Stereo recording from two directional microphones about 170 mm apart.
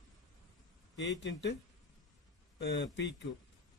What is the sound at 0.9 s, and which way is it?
Speech, 90° left.